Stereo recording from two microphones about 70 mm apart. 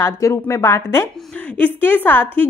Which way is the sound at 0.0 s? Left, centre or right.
Left.